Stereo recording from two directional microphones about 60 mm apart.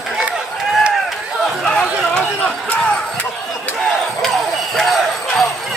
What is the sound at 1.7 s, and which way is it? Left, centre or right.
Chatter, centre.